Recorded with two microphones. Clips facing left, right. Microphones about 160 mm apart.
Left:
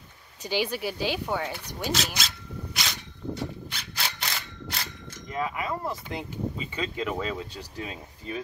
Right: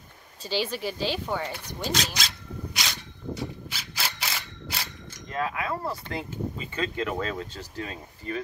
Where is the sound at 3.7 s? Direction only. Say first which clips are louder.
Even; 5° right (ahead or behind).